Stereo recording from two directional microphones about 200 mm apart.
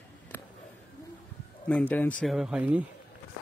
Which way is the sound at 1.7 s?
5° left (ahead or behind).